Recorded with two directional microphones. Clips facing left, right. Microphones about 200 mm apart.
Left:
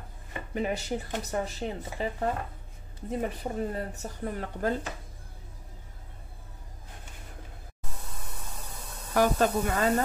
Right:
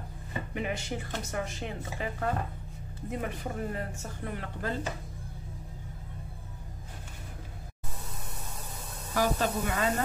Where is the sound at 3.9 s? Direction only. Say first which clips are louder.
Left 4 dB; 40° left (ahead or behind).